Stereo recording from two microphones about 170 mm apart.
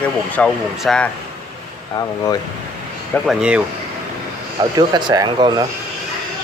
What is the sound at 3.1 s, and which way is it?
Speech, 5° right (ahead or behind).